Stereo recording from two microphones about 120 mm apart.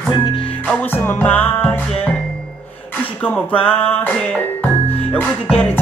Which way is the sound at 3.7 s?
15° left (ahead or behind).